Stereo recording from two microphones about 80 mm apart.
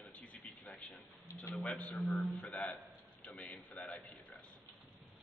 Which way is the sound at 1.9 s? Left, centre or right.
Centre.